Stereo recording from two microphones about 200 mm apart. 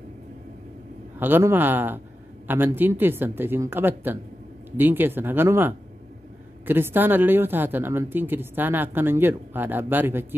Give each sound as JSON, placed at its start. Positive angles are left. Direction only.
{"t": 1.2, "sound": "speech", "side_deg": -10}